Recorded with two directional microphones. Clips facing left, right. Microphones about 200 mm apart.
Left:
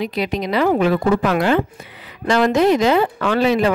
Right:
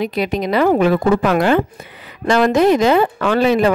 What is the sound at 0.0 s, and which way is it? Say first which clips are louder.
Speech: right 3 dB; 50° right (ahead or behind).